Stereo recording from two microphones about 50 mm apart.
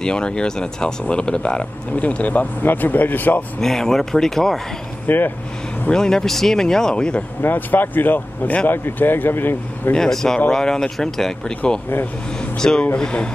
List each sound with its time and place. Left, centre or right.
0.0 s speech: centre
2.0 s speech: left
3.6 s speech: centre
5.0 s speech: left
5.9 s speech: centre
7.4 s speech: left
9.9 s speech: centre
12.5 s speech: centre